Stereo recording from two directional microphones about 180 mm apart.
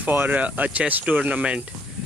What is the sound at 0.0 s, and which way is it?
A man's voice, 10° right (ahead or behind).